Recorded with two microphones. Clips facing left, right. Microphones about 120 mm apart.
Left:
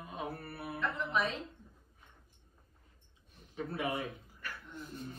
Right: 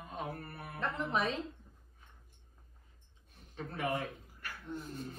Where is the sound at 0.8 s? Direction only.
40° right (ahead or behind).